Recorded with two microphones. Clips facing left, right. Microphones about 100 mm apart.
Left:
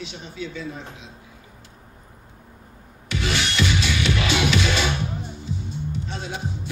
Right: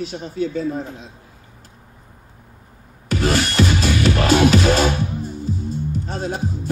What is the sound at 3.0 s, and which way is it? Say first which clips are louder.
Music: right 6 dB; 45° right (ahead or behind).